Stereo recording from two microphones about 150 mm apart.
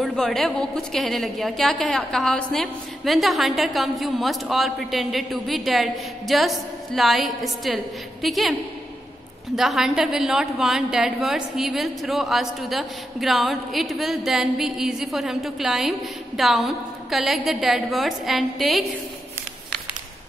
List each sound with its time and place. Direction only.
0.0 s a woman's voice: 5° left (ahead or behind)
9.6 s a woman's voice: centre (ahead or behind)